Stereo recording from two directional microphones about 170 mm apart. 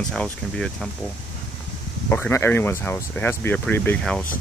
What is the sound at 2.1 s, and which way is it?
Speech, 10° left (ahead or behind).